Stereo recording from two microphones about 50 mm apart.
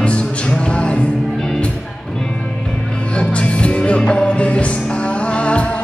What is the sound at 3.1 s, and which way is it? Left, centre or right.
Music, left.